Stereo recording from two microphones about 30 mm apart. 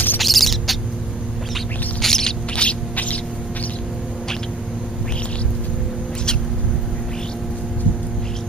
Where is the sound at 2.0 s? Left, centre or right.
Centre.